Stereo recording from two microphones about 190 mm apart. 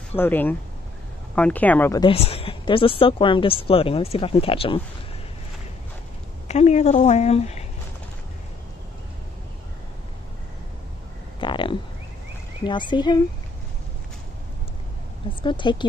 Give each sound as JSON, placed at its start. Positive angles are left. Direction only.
{"t": 0.1, "sound": "speech", "side_deg": 10}
{"t": 2.0, "sound": "speech", "side_deg": 30}
{"t": 6.4, "sound": "a woman's voice", "side_deg": 35}
{"t": 11.3, "sound": "a sound", "side_deg": 25}
{"t": 12.6, "sound": "speech", "side_deg": 25}
{"t": 15.4, "sound": "speech", "side_deg": 25}